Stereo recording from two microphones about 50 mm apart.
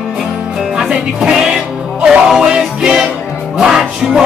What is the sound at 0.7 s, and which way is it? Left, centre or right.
Speech, centre.